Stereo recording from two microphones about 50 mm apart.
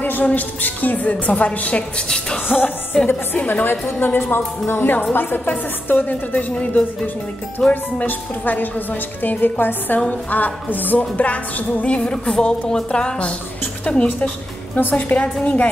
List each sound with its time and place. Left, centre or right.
0.0 s a woman's voice: left
2.0 s a woman's voice: centre
2.4 s a woman's voice: left
2.9 s a woman's voice: centre
3.8 s a woman's voice: left
6.5 s speech: left
7.7 s a woman's voice: left
14.8 s a woman's voice: left
15.1 s speech: left